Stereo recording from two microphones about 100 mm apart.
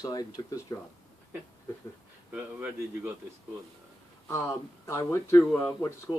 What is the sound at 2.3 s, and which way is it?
Speech, 15° right (ahead or behind).